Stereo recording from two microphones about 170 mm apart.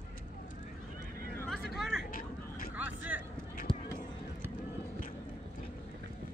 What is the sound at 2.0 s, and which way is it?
Vehicle, 55° left (ahead or behind).